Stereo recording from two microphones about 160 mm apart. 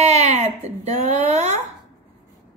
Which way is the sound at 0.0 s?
45° right (ahead or behind).